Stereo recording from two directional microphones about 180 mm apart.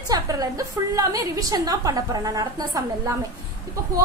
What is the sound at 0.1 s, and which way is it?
A woman's voice, 20° right (ahead or behind).